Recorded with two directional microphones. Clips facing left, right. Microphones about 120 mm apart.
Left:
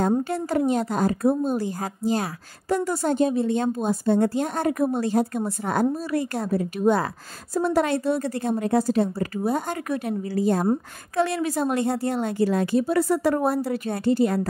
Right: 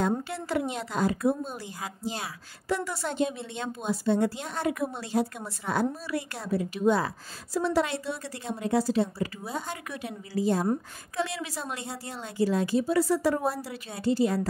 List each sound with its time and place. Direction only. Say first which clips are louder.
0.2 s a woman's voice: left 7 dB; 45° left (ahead or behind)